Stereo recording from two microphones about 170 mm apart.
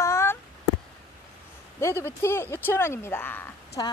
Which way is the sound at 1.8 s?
15° left (ahead or behind).